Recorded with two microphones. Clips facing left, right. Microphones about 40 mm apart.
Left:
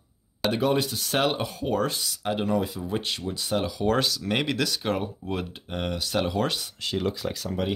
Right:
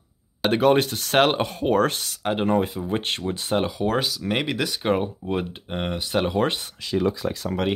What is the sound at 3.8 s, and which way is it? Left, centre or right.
Speech, centre.